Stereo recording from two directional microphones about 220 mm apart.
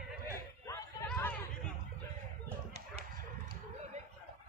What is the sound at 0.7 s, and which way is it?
Chatter, 10° left (ahead or behind).